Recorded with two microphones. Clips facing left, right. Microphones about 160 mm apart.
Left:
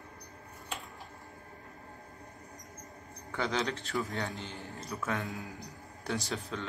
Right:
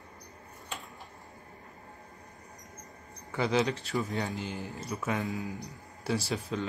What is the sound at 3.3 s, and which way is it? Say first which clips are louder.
Speech: right 5 dB; 10° right (ahead or behind).